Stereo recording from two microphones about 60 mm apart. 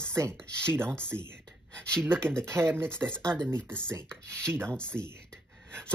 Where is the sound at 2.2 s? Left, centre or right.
Centre.